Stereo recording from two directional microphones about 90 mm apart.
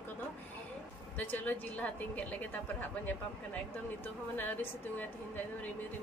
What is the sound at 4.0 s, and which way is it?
A woman's voice, 20° left (ahead or behind).